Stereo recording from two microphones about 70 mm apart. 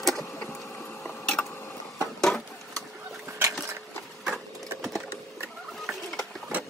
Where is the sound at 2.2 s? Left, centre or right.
Centre.